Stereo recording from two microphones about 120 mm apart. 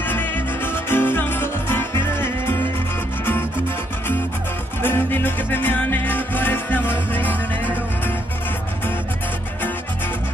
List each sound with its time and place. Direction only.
0.0 s music: 15° left (ahead or behind)
4.8 s music: 15° left (ahead or behind)